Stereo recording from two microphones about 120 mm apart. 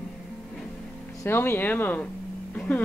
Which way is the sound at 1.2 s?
20° left (ahead or behind).